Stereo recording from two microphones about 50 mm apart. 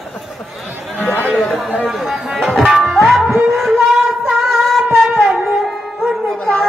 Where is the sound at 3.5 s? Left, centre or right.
Centre.